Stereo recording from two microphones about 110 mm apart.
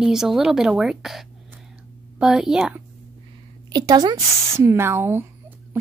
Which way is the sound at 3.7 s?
35° right (ahead or behind).